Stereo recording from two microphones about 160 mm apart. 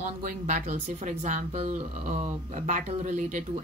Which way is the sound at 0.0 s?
50° right (ahead or behind).